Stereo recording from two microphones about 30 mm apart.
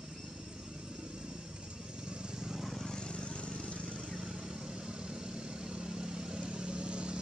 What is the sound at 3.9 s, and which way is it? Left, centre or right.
Vehicle, right.